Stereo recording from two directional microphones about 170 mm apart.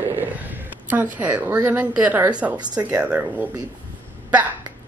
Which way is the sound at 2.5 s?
25° right (ahead or behind).